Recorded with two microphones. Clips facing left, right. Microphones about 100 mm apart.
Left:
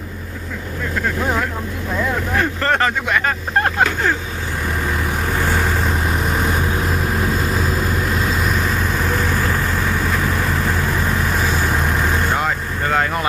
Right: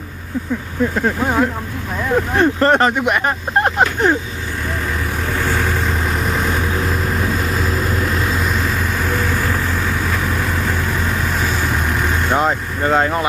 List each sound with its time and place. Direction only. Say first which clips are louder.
0.9 s speech: right 1 dB; 20° right (ahead or behind)
12.3 s speech: right 3 dB; 25° right (ahead or behind)